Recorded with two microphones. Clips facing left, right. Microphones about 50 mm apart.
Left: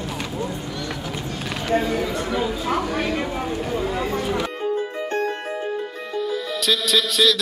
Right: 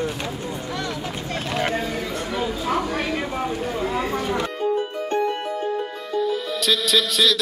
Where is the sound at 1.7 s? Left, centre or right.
Centre.